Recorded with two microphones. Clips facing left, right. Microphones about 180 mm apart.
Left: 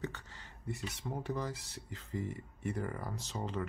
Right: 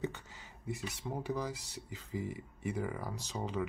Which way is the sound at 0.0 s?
10° right (ahead or behind).